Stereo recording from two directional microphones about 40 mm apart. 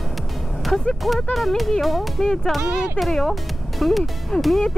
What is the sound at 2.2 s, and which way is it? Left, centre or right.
Speech, centre.